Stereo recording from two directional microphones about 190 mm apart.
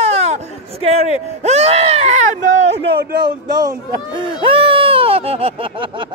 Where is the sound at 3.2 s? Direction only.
20° right (ahead or behind).